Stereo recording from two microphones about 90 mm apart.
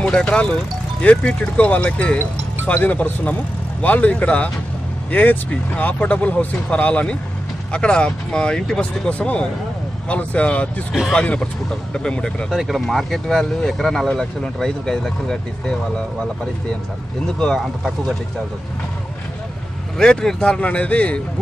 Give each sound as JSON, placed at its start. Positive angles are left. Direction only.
{"t": 0.0, "sound": "speech", "side_deg": 10}
{"t": 10.9, "sound": "speech", "side_deg": 0}
{"t": 17.4, "sound": "speech", "side_deg": 0}
{"t": 20.0, "sound": "speech", "side_deg": 10}